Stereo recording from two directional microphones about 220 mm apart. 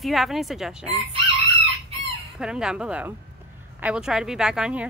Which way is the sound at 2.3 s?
5° right (ahead or behind).